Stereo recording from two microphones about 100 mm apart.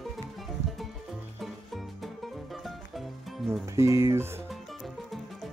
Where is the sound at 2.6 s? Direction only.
Centre (ahead or behind).